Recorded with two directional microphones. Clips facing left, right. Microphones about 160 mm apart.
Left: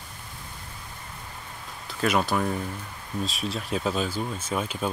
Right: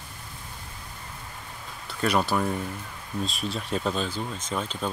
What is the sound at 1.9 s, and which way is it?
Speech, centre (ahead or behind).